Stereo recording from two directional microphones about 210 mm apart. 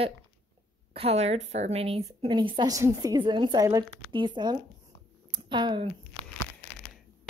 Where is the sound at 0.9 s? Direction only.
30° right (ahead or behind).